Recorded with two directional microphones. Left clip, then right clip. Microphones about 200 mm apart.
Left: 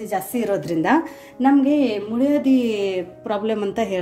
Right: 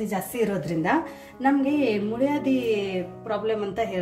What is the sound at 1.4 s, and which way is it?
Speech, 40° left (ahead or behind).